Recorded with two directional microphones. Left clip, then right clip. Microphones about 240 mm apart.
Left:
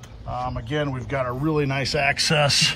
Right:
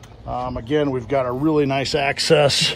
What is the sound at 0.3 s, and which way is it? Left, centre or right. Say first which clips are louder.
Speech: right 5 dB; right.